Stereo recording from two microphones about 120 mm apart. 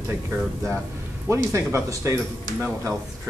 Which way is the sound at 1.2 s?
20° right (ahead or behind).